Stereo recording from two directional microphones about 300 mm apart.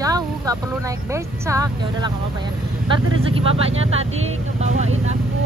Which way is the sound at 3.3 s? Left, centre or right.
Centre.